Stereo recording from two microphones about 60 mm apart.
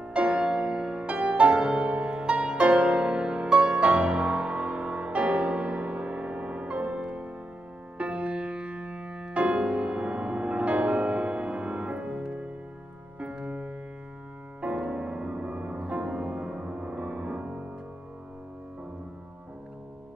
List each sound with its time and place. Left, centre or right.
0.0 s music: centre